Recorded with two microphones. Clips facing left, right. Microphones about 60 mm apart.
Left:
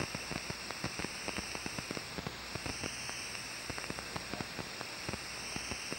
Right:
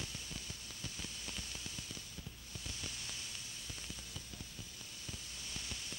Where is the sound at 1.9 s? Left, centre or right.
Left.